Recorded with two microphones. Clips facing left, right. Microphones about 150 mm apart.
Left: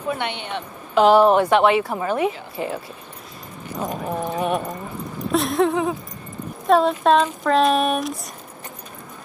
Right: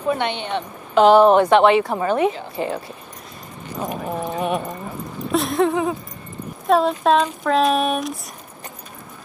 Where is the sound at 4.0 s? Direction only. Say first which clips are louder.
Even; centre (ahead or behind).